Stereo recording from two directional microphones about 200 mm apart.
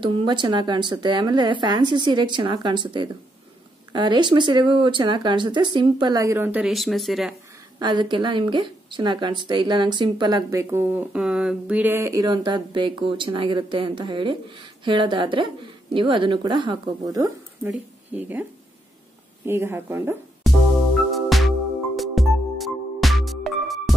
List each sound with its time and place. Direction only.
0.0 s a woman's voice: 25° right (ahead or behind); by 7.3 s centre (ahead or behind)
7.8 s a woman's voice: 25° right (ahead or behind)
21.1 s music: centre (ahead or behind)